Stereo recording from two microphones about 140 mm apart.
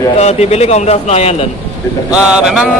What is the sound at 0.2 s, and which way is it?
Speech, 50° left (ahead or behind).